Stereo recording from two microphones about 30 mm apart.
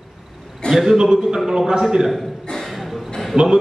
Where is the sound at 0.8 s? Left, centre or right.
Centre.